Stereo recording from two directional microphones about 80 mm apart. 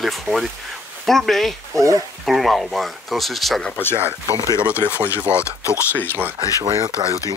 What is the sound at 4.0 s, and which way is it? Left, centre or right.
Speech, right.